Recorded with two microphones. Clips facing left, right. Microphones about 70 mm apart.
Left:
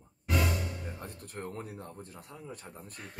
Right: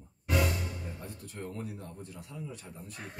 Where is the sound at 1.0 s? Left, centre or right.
Left.